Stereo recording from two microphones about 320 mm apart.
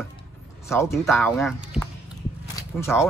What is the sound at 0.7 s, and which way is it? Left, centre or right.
A man's voice, centre.